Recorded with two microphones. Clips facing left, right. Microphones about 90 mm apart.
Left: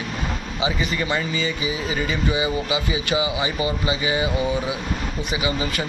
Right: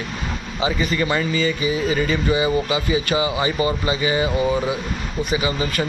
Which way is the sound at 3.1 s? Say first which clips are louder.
Left 1 dB; 45° right (ahead or behind).